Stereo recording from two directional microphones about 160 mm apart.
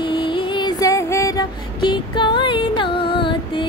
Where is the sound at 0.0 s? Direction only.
30° left (ahead or behind).